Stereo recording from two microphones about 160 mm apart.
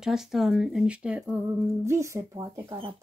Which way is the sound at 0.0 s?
5° right (ahead or behind).